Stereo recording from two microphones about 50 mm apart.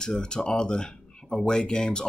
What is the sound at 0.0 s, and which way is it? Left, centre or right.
Speech, centre.